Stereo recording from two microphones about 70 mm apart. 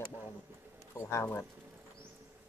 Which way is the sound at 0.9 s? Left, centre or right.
Left.